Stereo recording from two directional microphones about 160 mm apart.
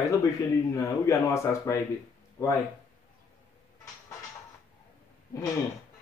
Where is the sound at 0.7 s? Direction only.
20° left (ahead or behind).